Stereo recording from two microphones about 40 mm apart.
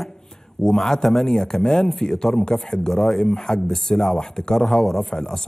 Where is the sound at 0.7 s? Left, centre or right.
Centre.